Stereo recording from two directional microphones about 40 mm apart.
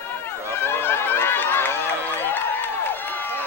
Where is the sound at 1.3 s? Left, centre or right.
Left.